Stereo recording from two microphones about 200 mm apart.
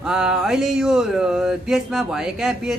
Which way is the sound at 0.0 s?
5° right (ahead or behind).